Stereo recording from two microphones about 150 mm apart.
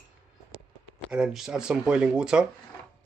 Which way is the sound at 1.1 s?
5° right (ahead or behind).